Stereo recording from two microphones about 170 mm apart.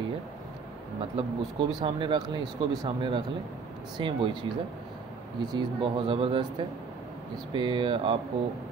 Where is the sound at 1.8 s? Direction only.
25° right (ahead or behind).